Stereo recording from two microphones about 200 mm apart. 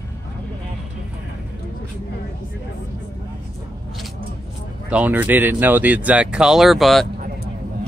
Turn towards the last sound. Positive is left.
turn(degrees=0)  # may be behind; listen again after turning